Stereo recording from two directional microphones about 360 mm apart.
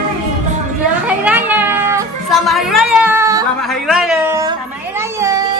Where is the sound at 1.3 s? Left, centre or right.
Centre.